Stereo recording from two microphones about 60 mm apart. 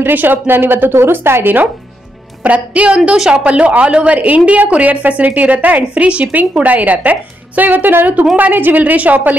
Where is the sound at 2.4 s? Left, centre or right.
Right.